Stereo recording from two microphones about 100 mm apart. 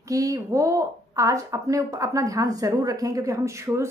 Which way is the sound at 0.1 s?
35° right (ahead or behind).